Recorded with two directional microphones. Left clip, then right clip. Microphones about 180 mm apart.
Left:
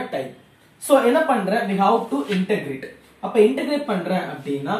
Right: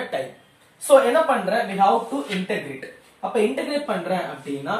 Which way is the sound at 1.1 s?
10° right (ahead or behind).